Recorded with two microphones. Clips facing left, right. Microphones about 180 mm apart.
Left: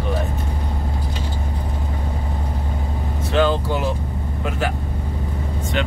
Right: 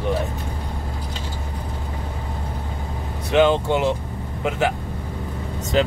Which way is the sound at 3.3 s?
20° right (ahead or behind).